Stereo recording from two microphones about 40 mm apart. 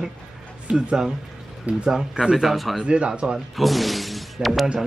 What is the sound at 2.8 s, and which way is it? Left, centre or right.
Speech, right.